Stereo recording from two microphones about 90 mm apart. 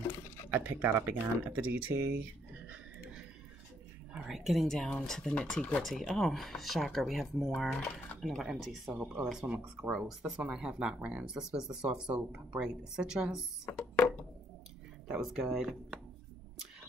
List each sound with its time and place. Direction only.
0.5 s speech: 20° right (ahead or behind)
2.7 s a sound: 10° right (ahead or behind)
4.1 s speech: 5° right (ahead or behind)
15.0 s speech: 5° right (ahead or behind)